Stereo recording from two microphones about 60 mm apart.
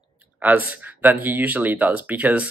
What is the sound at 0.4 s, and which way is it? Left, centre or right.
Speech, right.